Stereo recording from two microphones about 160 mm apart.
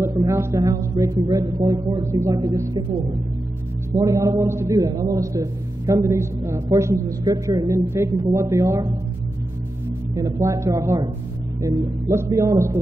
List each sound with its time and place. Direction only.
0.0 s a man's voice: 15° right (ahead or behind)
3.9 s a man's voice: 20° right (ahead or behind)
10.1 s a man's voice: 20° right (ahead or behind)